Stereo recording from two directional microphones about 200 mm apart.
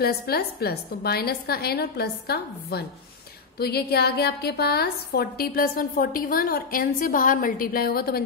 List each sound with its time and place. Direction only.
0.0 s a woman's voice: 50° left (ahead or behind)